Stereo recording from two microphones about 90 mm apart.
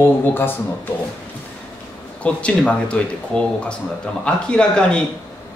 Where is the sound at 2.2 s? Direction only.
15° left (ahead or behind).